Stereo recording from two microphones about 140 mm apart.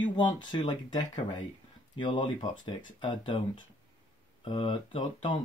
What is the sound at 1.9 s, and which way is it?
Speech, 30° left (ahead or behind).